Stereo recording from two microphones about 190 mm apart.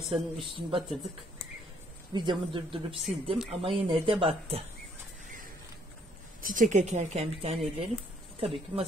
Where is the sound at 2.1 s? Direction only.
25° right (ahead or behind).